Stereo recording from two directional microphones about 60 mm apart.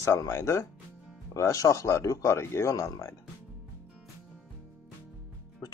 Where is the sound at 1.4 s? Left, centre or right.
Left.